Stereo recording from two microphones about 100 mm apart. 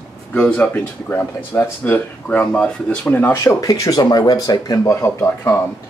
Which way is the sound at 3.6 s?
35° left (ahead or behind).